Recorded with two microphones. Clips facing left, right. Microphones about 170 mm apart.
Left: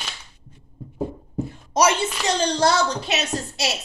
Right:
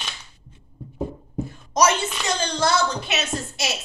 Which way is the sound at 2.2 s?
35° left (ahead or behind).